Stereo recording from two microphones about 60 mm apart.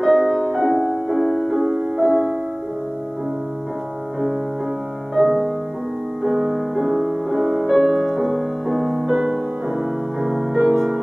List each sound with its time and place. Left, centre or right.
0.0 s music: centre
5.1 s music: centre